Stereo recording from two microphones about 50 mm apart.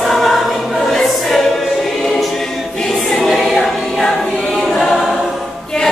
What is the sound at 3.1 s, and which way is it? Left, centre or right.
Choir, centre.